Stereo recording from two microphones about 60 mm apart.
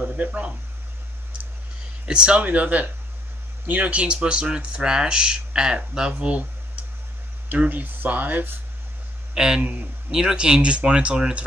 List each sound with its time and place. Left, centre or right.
0.0 s speech: right
2.0 s speech: centre
2.4 s speech: right
7.7 s speech: right
9.3 s speech: centre
9.6 s speech: right
10.1 s speech: centre